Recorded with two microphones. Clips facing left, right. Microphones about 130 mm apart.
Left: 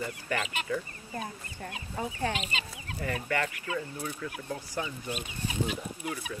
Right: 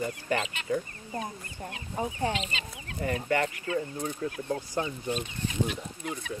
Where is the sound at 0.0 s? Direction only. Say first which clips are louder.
Right 3 dB; 25° right (ahead or behind).